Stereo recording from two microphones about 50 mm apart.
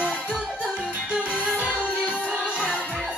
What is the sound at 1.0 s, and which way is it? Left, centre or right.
Music, right.